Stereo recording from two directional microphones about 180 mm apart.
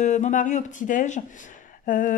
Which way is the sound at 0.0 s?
40° left (ahead or behind).